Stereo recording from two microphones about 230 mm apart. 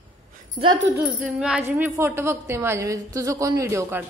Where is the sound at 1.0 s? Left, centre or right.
Centre.